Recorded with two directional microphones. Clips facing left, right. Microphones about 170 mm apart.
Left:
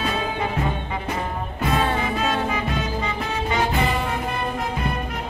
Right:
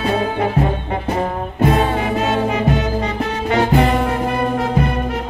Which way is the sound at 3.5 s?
70° right (ahead or behind).